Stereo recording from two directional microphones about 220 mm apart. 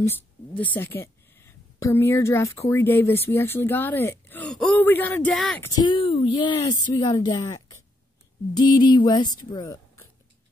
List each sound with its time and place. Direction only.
0.0 s speech: 10° left (ahead or behind)
5.8 s a woman's voice: 20° left (ahead or behind)